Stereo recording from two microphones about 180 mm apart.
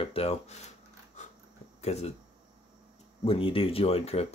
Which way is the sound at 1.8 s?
35° left (ahead or behind).